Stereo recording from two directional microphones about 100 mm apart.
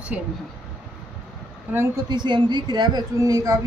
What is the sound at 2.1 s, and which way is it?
A woman's voice, 50° right (ahead or behind).